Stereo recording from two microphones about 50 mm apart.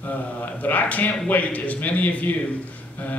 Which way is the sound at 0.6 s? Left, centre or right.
Left.